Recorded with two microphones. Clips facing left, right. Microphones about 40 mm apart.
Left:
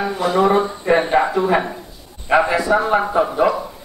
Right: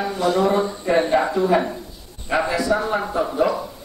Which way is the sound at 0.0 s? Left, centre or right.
Centre.